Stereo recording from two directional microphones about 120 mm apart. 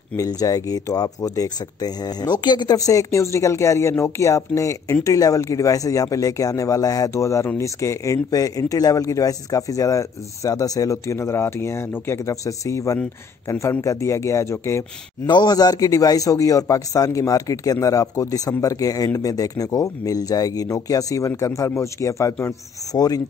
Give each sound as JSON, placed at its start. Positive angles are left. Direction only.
{"t": 0.2, "sound": "speech", "side_deg": 30}
{"t": 15.2, "sound": "speech", "side_deg": 35}